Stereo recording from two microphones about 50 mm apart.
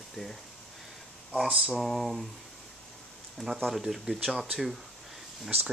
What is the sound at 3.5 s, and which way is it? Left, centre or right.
Speech, centre.